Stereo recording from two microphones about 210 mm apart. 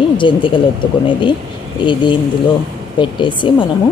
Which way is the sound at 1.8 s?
25° left (ahead or behind).